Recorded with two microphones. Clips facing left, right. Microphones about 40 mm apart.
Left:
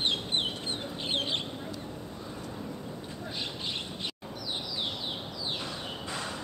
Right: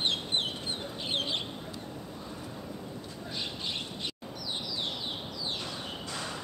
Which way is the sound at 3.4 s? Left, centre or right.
Centre.